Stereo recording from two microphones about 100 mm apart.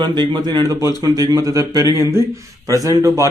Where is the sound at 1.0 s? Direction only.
35° right (ahead or behind).